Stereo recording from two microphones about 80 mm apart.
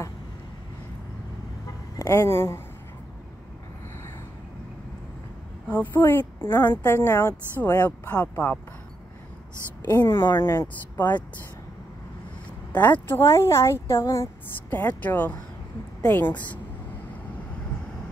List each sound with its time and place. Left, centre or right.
2.0 s a woman's voice: left
5.7 s a woman's voice: left
7.8 s speech: left
9.8 s speech: left
12.7 s speech: left
13.2 s a woman's voice: left
14.7 s speech: left